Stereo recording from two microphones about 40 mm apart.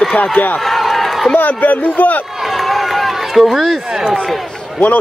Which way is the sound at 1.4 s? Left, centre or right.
Left.